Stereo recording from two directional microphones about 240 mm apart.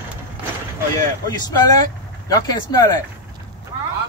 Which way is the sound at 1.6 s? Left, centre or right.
Centre.